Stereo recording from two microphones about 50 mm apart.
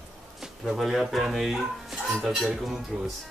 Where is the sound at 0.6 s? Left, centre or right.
Centre.